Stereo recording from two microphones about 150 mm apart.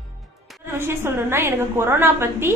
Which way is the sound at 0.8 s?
15° right (ahead or behind).